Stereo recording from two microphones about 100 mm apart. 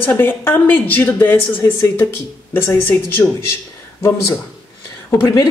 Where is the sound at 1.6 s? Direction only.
30° left (ahead or behind).